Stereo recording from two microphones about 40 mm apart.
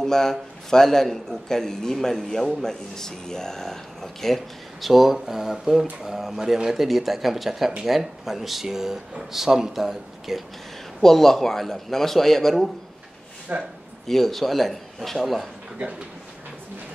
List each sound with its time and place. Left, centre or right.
0.0 s a man's voice: centre
4.8 s a man's voice: centre
11.0 s a man's voice: centre
13.5 s speech: right
14.0 s a man's voice: centre